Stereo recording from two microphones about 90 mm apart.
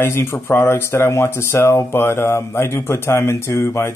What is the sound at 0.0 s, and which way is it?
Speech, 30° left (ahead or behind).